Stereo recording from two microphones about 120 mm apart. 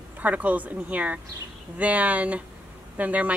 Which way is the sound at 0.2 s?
15° right (ahead or behind).